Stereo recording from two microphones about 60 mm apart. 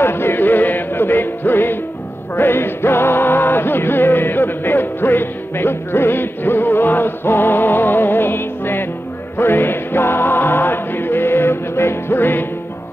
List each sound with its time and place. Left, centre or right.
0.0 s music: left